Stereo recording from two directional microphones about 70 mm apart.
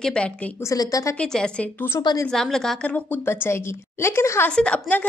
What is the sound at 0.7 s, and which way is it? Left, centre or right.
Speech, left.